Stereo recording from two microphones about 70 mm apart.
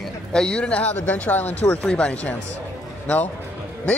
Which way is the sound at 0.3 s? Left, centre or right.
Centre.